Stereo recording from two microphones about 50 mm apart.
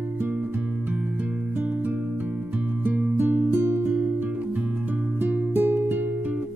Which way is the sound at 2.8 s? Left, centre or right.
Right.